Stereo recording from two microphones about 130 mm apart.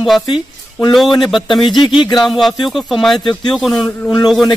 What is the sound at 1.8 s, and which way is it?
Speech, 40° left (ahead or behind).